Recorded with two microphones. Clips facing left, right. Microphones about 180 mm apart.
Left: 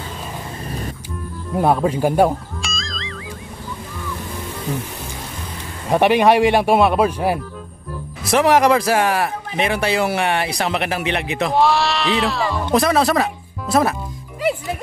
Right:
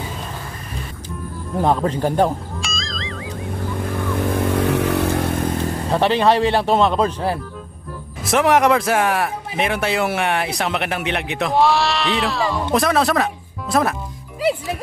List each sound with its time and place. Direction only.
1.6 s speech: 10° left (ahead or behind)
2.6 s music: centre (ahead or behind)
3.8 s vehicle: 70° right (ahead or behind); by 5.7 s 55° right (ahead or behind)
5.9 s speech: 15° left (ahead or behind)
8.2 s speech: centre (ahead or behind)